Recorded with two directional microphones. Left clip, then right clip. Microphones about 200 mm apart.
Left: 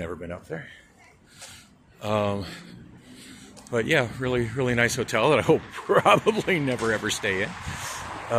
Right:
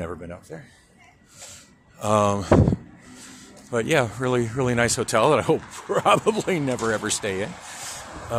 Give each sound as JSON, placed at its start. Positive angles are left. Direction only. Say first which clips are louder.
{"t": 0.0, "sound": "speech", "louder": "even", "side_deg": 0}
{"t": 2.0, "sound": "speech", "louder": "right 5 dB", "side_deg": -15}
{"t": 3.7, "sound": "speech", "louder": "right 2 dB", "side_deg": -10}